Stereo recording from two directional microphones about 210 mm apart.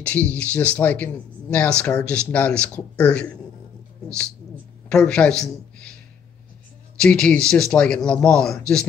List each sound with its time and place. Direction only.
0.0 s speech: 5° left (ahead or behind)
4.8 s a man's voice: 5° left (ahead or behind)
7.0 s speech: 5° left (ahead or behind)